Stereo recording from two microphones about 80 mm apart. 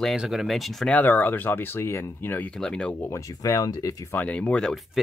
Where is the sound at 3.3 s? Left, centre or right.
Left.